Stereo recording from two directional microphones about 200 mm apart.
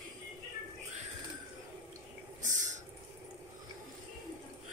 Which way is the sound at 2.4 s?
40° right (ahead or behind).